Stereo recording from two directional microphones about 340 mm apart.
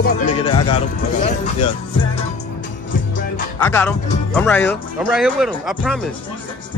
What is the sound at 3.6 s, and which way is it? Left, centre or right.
Speech, centre.